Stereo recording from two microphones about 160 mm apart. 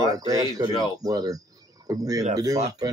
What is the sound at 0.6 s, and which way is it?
Speech, 25° right (ahead or behind).